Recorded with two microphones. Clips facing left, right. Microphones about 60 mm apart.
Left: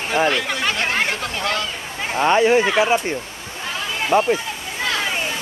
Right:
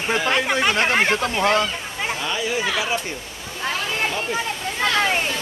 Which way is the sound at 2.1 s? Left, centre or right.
Left.